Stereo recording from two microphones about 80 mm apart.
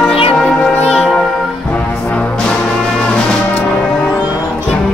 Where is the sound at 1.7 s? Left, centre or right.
Centre.